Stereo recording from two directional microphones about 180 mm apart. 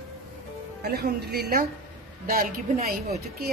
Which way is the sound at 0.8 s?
60° right (ahead or behind).